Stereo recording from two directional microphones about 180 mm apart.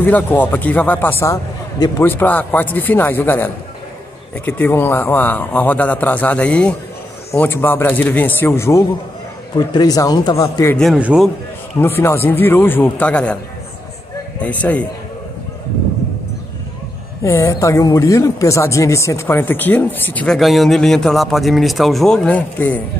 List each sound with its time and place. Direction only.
0.0 s a man's voice: 10° left (ahead or behind)
10.8 s speech: 5° right (ahead or behind)
11.8 s speech: 15° left (ahead or behind)
14.4 s speech: 10° left (ahead or behind)
17.2 s speech: 15° left (ahead or behind)